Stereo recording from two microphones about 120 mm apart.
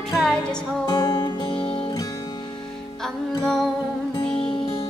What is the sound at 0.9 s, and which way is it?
Music, 30° left (ahead or behind).